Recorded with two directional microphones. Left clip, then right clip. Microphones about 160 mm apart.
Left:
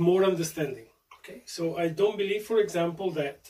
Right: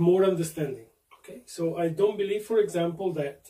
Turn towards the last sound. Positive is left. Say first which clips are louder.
# even
turn(degrees=-10)  # may be behind; listen again after turning